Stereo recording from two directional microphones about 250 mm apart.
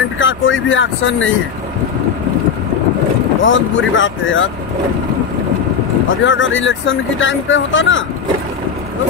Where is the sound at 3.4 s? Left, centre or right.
Left.